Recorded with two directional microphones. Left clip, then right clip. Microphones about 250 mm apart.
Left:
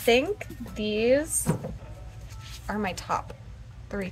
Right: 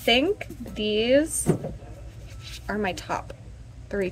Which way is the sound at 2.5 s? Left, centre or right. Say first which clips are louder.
Right 3 dB; centre.